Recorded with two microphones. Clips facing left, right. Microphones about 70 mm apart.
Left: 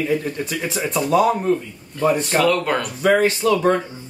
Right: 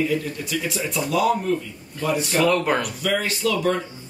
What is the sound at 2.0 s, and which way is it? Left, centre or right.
Speech, left.